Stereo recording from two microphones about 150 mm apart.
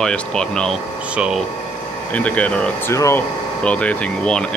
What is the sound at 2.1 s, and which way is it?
Speech, 10° left (ahead or behind).